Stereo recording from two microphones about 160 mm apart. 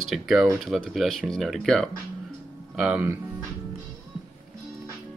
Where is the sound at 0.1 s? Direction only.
Centre (ahead or behind).